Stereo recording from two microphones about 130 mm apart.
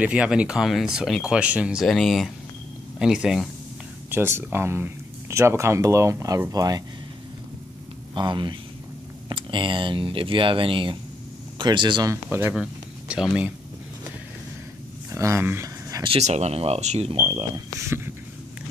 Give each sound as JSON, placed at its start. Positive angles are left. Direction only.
{"t": 0.0, "sound": "speech", "side_deg": -10}
{"t": 4.1, "sound": "speech", "side_deg": -20}
{"t": 8.1, "sound": "speech", "side_deg": -35}
{"t": 12.3, "sound": "speech", "side_deg": -15}
{"t": 15.1, "sound": "speech", "side_deg": -20}
{"t": 16.2, "sound": "speech", "side_deg": -60}
{"t": 17.1, "sound": "speech", "side_deg": -40}
{"t": 17.7, "sound": "speech", "side_deg": -20}